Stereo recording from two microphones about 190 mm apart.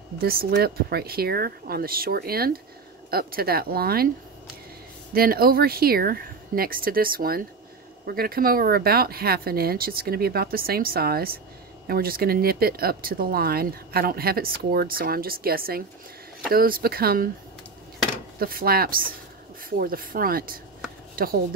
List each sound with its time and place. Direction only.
0.2 s speech: 50° right (ahead or behind)
5.1 s speech: 50° right (ahead or behind)
18.4 s speech: 50° right (ahead or behind)